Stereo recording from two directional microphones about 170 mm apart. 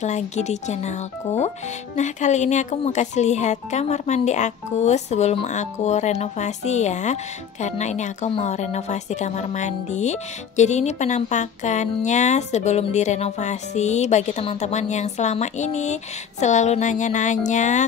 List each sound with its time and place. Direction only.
0.0 s a woman's voice: 45° left (ahead or behind)